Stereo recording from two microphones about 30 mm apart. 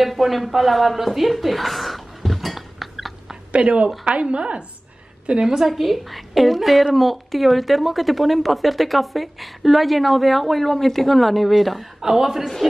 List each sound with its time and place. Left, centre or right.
0.0 s a woman's voice: centre
1.3 s dishes: centre
3.5 s a woman's voice: right
5.6 s a woman's voice: centre
12.0 s a man's voice: centre